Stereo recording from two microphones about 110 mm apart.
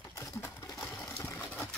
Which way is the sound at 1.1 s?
25° left (ahead or behind).